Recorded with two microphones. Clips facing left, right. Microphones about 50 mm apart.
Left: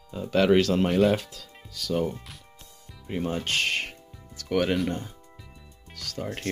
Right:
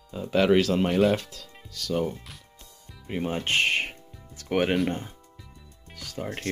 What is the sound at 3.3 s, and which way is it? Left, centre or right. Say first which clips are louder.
Speech: right 4 dB; right.